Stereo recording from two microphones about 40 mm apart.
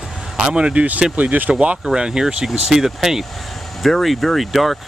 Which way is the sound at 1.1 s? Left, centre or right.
Right.